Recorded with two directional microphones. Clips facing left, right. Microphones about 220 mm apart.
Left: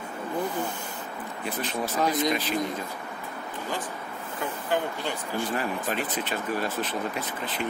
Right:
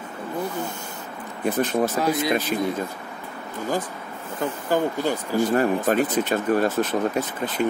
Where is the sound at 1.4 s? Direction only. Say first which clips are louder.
Right 10 dB; 45° right (ahead or behind).